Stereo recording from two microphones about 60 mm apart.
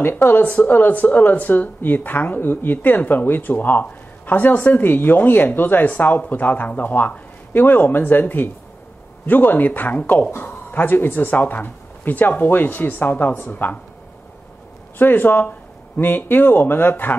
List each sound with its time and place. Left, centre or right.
0.0 s speech: left
15.0 s speech: left